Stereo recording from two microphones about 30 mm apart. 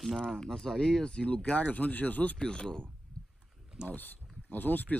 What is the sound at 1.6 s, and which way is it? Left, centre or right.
Speech, left.